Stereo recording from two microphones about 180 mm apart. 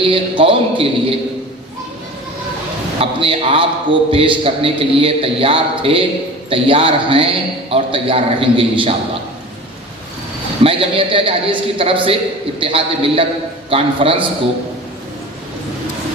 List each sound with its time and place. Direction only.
0.0 s a man's voice: 30° right (ahead or behind)
3.0 s a man's voice: 30° right (ahead or behind)
10.6 s a man's voice: 30° right (ahead or behind)